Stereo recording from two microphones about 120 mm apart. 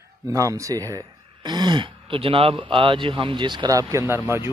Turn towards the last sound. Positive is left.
turn(degrees=-20)  # may be behind; listen again after turning